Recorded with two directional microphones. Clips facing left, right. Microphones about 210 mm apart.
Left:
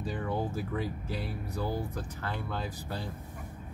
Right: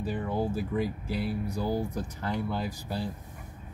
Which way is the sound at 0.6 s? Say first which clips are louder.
Right 4 dB; 10° right (ahead or behind).